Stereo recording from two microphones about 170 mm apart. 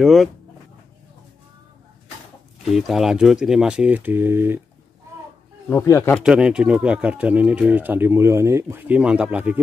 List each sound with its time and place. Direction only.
0.0 s speech: centre (ahead or behind)
2.6 s speech: centre (ahead or behind)
5.7 s a man's voice: 15° left (ahead or behind)
6.2 s speech: 5° right (ahead or behind)